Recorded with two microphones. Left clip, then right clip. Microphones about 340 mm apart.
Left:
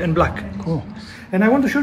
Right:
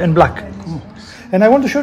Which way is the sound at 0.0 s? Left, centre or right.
Right.